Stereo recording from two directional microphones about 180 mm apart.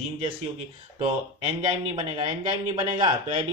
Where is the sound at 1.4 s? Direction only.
30° right (ahead or behind).